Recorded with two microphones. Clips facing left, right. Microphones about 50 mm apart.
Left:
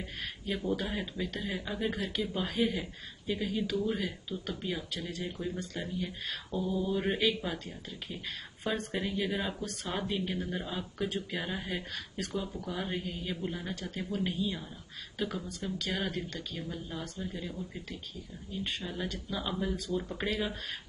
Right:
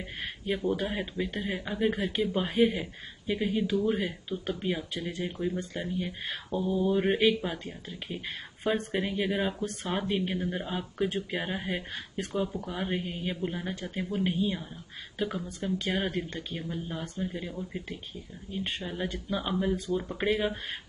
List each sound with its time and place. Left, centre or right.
0.0 s a man's voice: right